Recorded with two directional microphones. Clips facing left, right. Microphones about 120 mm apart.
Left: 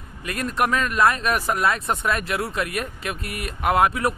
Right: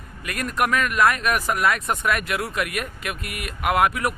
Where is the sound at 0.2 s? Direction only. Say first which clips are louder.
Left 1 dB; 25° left (ahead or behind).